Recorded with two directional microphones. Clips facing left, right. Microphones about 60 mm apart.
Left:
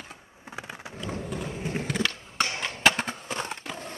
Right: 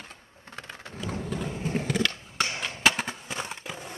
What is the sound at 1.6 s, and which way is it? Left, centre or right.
Vehicle, centre.